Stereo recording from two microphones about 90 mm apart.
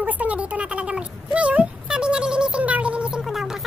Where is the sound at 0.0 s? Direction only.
15° right (ahead or behind).